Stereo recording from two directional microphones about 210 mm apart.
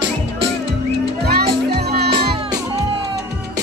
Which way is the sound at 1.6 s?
50° right (ahead or behind).